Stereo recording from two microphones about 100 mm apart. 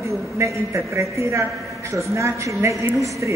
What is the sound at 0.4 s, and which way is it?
A man's voice, 30° right (ahead or behind).